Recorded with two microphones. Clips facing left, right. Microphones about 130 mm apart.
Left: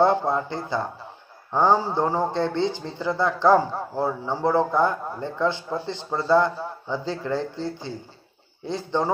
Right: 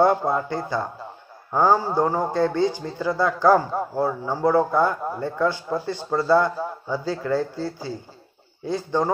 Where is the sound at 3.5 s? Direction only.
10° right (ahead or behind).